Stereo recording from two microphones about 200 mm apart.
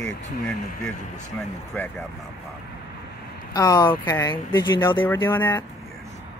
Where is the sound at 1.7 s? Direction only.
10° left (ahead or behind).